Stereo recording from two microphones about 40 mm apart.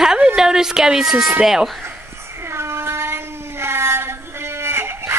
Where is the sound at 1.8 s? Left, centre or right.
Right.